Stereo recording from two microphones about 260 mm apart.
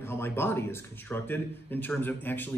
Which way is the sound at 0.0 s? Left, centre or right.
Centre.